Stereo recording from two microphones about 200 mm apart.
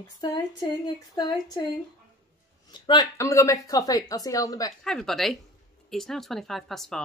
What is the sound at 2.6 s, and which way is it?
A woman's voice, 20° left (ahead or behind).